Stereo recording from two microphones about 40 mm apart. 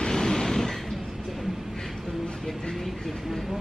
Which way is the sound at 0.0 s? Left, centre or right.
Centre.